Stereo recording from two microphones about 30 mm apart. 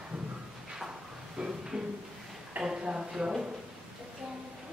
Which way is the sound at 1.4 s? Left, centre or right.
Right.